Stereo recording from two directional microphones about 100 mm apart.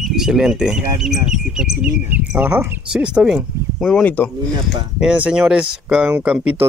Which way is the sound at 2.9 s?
10° right (ahead or behind).